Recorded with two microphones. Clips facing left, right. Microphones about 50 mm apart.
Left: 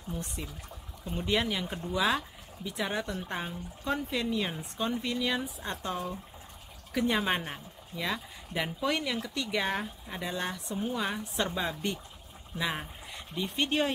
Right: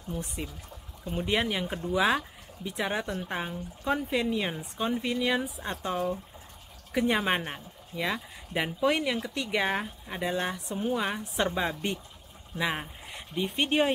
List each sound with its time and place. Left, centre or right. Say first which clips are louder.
1.0 s speech: right 2 dB; centre